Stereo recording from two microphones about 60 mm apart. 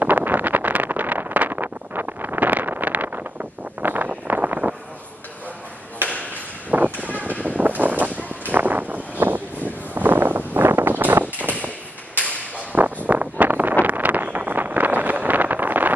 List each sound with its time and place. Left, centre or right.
0.0 s wind noise: right
6.7 s vehicle: right
7.4 s a sound: right
8.5 s vehicle: right
12.7 s wind: right
13.8 s vehicle: right